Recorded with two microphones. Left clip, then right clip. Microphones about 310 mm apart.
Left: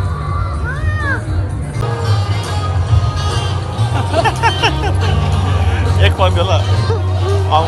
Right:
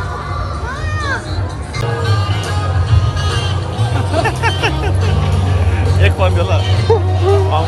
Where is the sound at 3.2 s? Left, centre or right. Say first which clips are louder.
Right 1 dB; centre.